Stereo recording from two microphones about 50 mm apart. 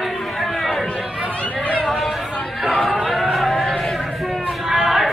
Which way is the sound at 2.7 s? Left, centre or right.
Centre.